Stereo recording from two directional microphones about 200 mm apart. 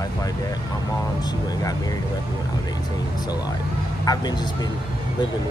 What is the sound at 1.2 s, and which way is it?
Speech, 20° left (ahead or behind).